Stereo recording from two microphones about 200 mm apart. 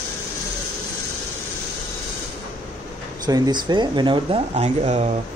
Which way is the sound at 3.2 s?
20° right (ahead or behind).